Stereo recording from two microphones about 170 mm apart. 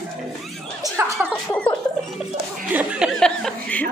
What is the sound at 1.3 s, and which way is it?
Music, 10° left (ahead or behind).